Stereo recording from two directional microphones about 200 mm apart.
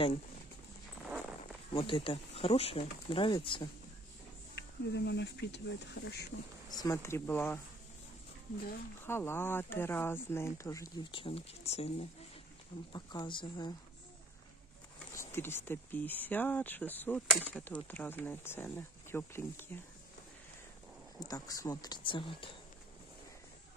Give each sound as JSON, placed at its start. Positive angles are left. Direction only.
{"t": 1.7, "sound": "speech", "side_deg": 25}
{"t": 4.6, "sound": "speech", "side_deg": 55}
{"t": 6.7, "sound": "speech", "side_deg": 15}
{"t": 9.0, "sound": "speech", "side_deg": 10}
{"t": 12.9, "sound": "speech", "side_deg": 20}
{"t": 15.1, "sound": "speech", "side_deg": 10}
{"t": 21.2, "sound": "speech", "side_deg": 20}